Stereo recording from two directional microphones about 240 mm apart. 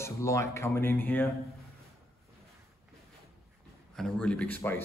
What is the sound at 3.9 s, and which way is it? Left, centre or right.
Speech, centre.